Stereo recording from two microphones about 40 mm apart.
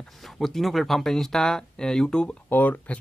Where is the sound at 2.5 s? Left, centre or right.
Left.